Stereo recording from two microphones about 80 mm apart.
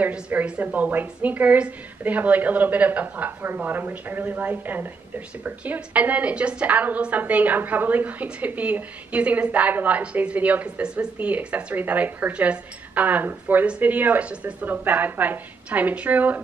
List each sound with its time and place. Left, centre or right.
0.0 s a woman's voice: right